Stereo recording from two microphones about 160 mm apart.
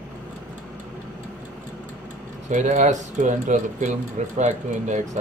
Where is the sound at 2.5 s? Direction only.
50° right (ahead or behind).